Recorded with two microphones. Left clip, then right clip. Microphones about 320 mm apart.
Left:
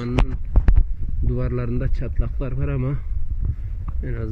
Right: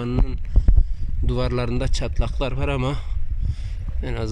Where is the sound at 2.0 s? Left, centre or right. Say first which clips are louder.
Right 6 dB; centre.